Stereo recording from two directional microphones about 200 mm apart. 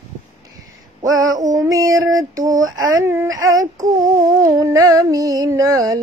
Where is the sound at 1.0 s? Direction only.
20° right (ahead or behind).